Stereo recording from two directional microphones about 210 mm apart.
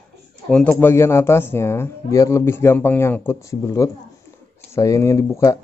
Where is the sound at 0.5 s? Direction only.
5° left (ahead or behind).